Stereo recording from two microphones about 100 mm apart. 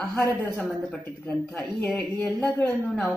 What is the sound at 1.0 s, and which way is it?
Speech, 20° left (ahead or behind).